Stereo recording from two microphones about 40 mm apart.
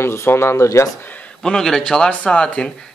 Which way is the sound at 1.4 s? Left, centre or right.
Centre.